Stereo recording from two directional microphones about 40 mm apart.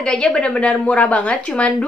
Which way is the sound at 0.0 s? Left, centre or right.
Left.